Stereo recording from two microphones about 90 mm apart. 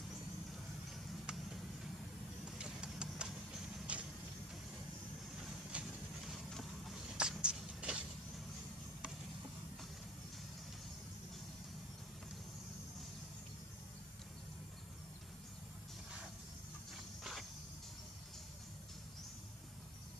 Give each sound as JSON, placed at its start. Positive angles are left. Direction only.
{"t": 2.6, "sound": "vehicle", "side_deg": -10}
{"t": 5.4, "sound": "train", "side_deg": -10}
{"t": 5.9, "sound": "a sound", "side_deg": 0}
{"t": 17.2, "sound": "walk", "side_deg": 0}